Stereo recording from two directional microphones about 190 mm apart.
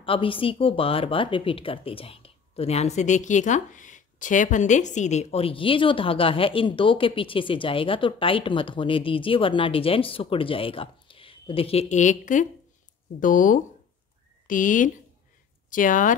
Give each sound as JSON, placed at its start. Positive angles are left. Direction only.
{"t": 0.0, "sound": "speech", "side_deg": 30}